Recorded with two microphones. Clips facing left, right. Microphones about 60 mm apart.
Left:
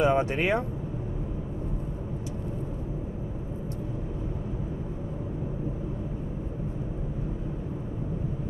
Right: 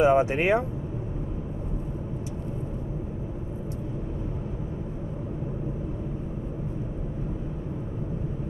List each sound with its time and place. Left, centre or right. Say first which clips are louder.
0.0 s speech: right 3 dB; centre